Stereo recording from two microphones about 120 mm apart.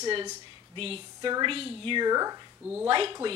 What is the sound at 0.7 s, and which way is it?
A woman's voice, 50° right (ahead or behind).